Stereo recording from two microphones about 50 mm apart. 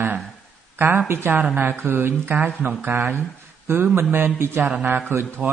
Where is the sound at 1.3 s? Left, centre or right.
Right.